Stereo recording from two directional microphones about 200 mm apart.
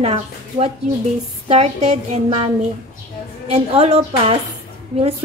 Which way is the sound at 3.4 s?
30° right (ahead or behind).